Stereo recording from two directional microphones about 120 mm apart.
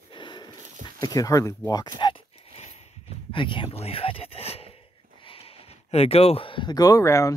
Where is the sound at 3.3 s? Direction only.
45° left (ahead or behind).